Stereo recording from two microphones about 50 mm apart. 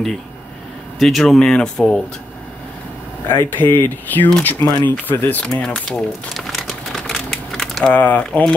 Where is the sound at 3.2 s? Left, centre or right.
Left.